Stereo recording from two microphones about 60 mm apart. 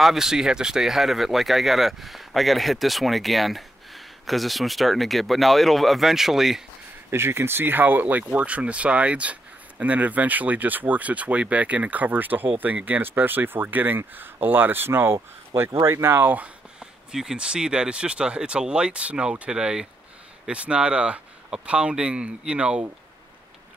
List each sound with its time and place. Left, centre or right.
0.0 s speech: centre
7.1 s speech: right
16.8 s speech: centre